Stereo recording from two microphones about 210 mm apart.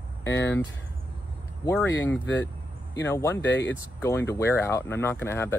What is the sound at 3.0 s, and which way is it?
Speech, 10° left (ahead or behind).